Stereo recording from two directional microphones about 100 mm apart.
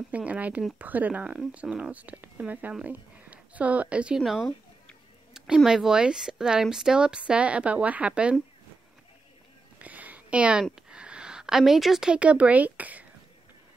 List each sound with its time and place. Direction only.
0.1 s a woman's voice: 15° right (ahead or behind)
4.2 s speech: centre (ahead or behind)
9.8 s speech: 15° right (ahead or behind)